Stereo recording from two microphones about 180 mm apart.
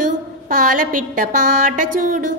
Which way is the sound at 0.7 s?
50° right (ahead or behind).